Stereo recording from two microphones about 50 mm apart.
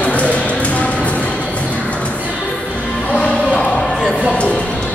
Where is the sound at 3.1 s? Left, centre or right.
Centre.